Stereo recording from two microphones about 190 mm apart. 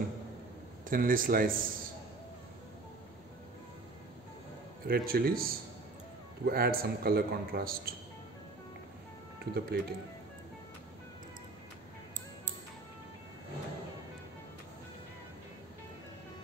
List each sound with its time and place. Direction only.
0.8 s speech: 45° right (ahead or behind)
4.8 s speech: 50° right (ahead or behind)
9.4 s speech: 55° right (ahead or behind)